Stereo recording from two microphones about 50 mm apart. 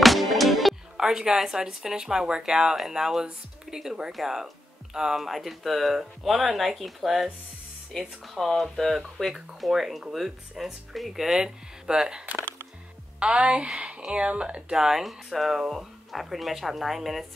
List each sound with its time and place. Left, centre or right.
0.0 s music: centre
0.9 s speech: centre
13.2 s speech: right
14.8 s speech: centre